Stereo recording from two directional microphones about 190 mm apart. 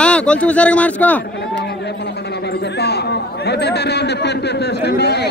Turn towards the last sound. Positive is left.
turn(degrees=60)  # may be behind; listen again after turning